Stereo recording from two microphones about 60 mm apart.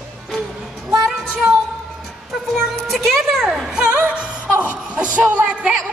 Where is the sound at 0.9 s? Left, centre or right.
Centre.